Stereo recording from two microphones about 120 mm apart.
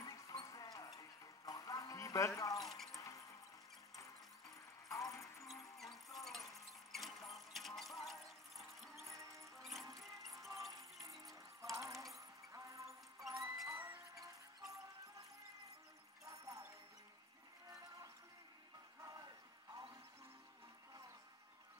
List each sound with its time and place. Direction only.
0.0 s horse: 30° left (ahead or behind)
2.6 s music: centre (ahead or behind)
3.0 s a sound: 25° left (ahead or behind)
4.8 s music: 25° left (ahead or behind)
6.1 s a sound: centre (ahead or behind)
9.3 s music: centre (ahead or behind)
9.8 s music: 30° right (ahead or behind)
11.0 s music: centre (ahead or behind)
11.7 s music: 25° right (ahead or behind)
16.3 s music: 30° right (ahead or behind)
19.0 s a sound: 30° right (ahead or behind)